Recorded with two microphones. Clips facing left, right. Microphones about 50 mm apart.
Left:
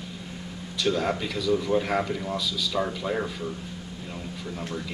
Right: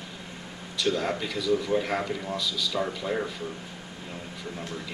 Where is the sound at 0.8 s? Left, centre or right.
Centre.